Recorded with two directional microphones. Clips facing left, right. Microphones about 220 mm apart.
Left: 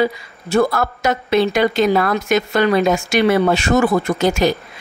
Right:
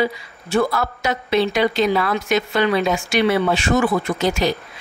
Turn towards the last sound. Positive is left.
turn(degrees=50)  # may be behind; listen again after turning